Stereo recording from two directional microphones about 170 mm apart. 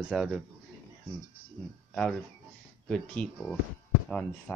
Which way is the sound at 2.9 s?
5° left (ahead or behind).